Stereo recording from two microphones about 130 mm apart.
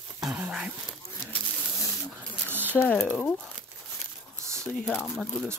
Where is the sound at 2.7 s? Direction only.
15° left (ahead or behind).